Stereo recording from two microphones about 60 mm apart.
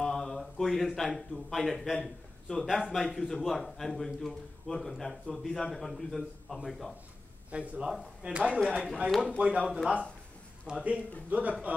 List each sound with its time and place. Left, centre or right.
0.0 s a man's voice: centre
7.5 s a man's voice: right
7.8 s a man's voice: centre
8.2 s speech: centre
10.7 s a man's voice: right